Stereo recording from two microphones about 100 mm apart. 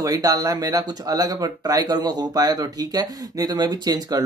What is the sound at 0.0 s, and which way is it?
Speech, 35° right (ahead or behind).